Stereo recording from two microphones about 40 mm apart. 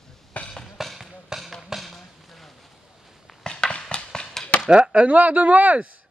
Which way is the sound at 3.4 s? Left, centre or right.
Left.